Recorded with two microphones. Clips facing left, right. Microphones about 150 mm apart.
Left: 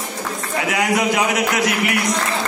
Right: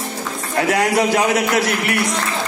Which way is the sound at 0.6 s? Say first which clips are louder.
Right 3 dB; 40° right (ahead or behind).